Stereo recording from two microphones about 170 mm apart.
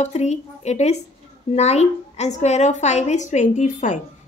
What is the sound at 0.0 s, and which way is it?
A woman's voice, 40° left (ahead or behind).